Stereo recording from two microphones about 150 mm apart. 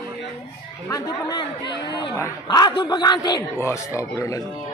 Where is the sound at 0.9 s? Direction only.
25° left (ahead or behind).